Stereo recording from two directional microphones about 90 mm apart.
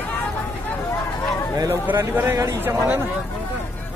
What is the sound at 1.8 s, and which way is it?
Speech, 25° right (ahead or behind).